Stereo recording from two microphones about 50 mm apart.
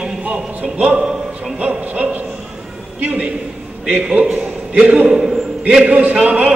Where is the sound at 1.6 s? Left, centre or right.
Right.